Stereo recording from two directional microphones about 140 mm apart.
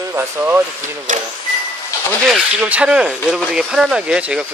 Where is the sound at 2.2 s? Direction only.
5° right (ahead or behind).